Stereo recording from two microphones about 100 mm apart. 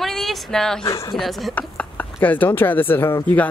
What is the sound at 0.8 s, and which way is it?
Speech, 30° left (ahead or behind).